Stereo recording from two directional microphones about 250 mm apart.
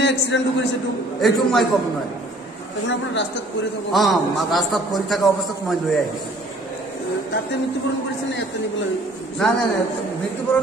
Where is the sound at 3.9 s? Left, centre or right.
Centre.